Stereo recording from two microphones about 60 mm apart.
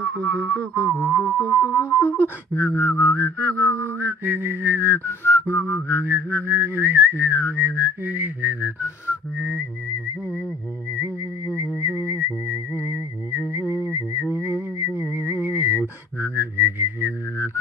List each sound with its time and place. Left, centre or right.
0.3 s a sound: centre
0.6 s music: left
1.1 s music: left
1.5 s mantra: left
4.0 s whistling: right
4.8 s mantra: left
5.9 s whistling: right
11.0 s whistling: right